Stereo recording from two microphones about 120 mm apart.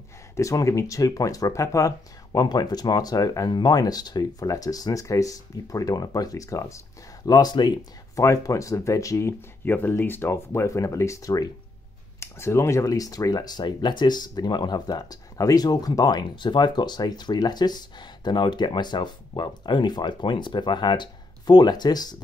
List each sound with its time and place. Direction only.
0.4 s speech: 25° left (ahead or behind)